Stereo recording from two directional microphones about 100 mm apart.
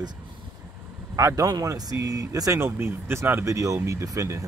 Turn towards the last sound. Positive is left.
turn(degrees=-30)  # may be behind; listen again after turning